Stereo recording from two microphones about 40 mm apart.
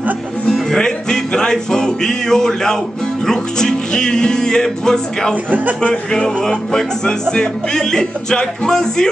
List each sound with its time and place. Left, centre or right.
0.5 s speech: centre